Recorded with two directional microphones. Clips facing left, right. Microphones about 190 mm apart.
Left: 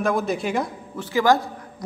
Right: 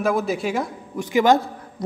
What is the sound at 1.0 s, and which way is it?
Speech, 20° right (ahead or behind).